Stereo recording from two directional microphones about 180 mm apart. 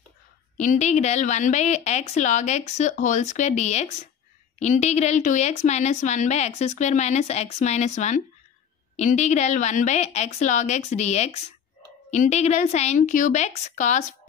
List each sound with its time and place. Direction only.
0.6 s a woman's voice: 40° left (ahead or behind)